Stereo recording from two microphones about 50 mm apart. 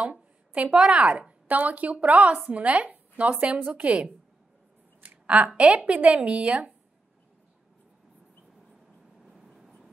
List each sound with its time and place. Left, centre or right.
0.6 s a woman's voice: centre
5.2 s a woman's voice: right
9.2 s vehicle: centre